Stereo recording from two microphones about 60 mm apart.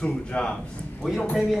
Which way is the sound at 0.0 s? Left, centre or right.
Centre.